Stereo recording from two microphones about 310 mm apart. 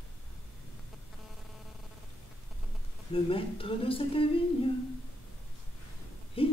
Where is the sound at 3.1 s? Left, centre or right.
Centre.